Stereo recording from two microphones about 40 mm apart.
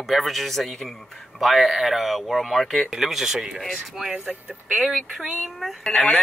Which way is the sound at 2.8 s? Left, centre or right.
Centre.